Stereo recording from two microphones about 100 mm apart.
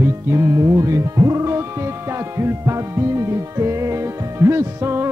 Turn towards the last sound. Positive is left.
turn(degrees=-25)  # may be behind; listen again after turning